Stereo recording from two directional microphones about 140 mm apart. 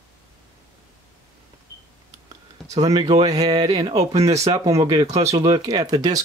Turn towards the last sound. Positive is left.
turn(degrees=-25)  # may be behind; listen again after turning